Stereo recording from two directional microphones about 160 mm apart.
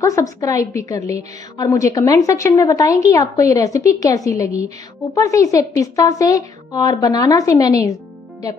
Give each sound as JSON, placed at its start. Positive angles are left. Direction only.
{"t": 0.0, "sound": "a woman's voice", "side_deg": 20}